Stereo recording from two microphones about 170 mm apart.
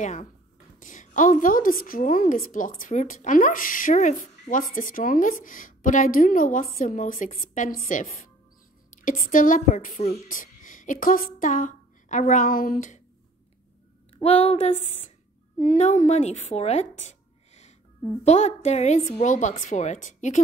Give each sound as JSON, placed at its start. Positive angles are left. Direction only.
{"t": 0.0, "sound": "a woman's voice", "side_deg": 45}
{"t": 8.9, "sound": "a woman's voice", "side_deg": 50}
{"t": 14.1, "sound": "a woman's voice", "side_deg": 35}